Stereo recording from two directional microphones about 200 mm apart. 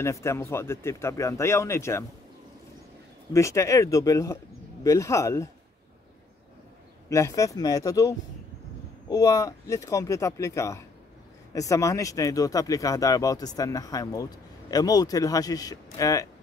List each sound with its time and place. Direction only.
0.0 s speech: 15° left (ahead or behind)
3.3 s speech: 15° left (ahead or behind)
7.1 s speech: 15° left (ahead or behind)